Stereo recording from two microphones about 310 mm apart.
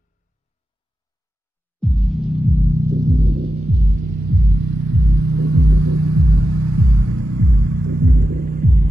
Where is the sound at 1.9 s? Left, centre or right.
Centre.